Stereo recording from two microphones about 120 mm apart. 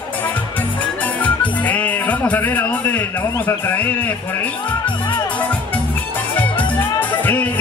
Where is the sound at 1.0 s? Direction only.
15° left (ahead or behind).